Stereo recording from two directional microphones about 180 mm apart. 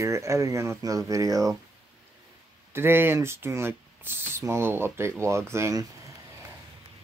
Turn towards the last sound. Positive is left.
turn(degrees=-20)  # may be behind; listen again after turning